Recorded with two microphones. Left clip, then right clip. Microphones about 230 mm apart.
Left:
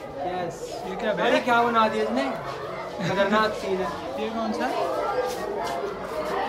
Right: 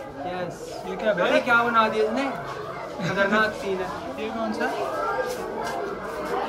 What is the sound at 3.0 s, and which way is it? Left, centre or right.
Speech, centre.